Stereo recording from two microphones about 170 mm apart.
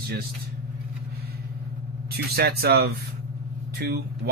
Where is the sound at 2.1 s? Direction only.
65° right (ahead or behind).